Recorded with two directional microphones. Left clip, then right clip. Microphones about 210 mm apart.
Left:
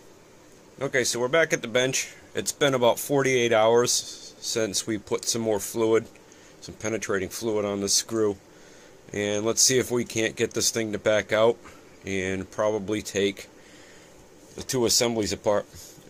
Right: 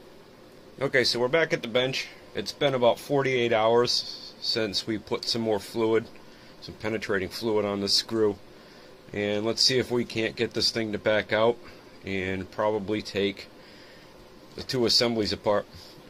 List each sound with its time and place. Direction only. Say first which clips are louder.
0.7 s speech: right 1 dB; centre (ahead or behind)
1.0 s speech: left 1 dB; 15° left (ahead or behind)
14.6 s speech: even; 20° left (ahead or behind)